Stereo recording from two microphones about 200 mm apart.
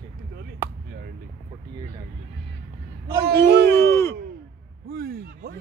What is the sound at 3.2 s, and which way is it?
Speech, 50° right (ahead or behind).